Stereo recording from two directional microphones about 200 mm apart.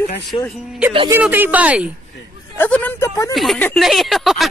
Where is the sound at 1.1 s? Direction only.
10° right (ahead or behind).